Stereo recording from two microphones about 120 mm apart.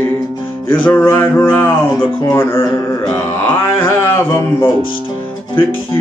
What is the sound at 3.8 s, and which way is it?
Music, 20° left (ahead or behind).